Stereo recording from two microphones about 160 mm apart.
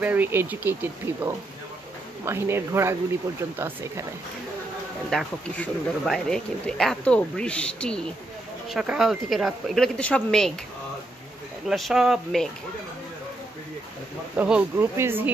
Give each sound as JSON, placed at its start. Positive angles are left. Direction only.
{"t": 0.0, "sound": "speech", "side_deg": -10}
{"t": 5.1, "sound": "speech", "side_deg": 0}
{"t": 8.6, "sound": "speech", "side_deg": -5}
{"t": 11.6, "sound": "speech", "side_deg": 0}
{"t": 14.3, "sound": "speech", "side_deg": -10}